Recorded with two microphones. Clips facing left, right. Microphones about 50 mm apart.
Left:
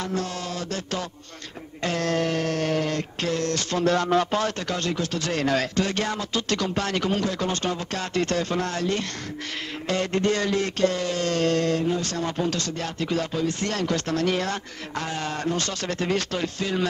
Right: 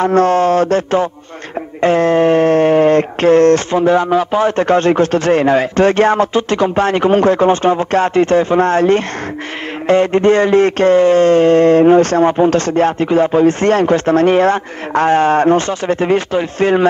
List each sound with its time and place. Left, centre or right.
0.0 s speech: right
3.7 s speech: centre
4.6 s speech: right
5.8 s speech: right
11.8 s speech: right
16.5 s speech: right